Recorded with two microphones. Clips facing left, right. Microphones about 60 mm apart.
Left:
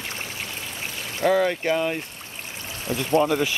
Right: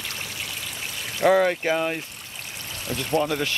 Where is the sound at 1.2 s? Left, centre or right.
Centre.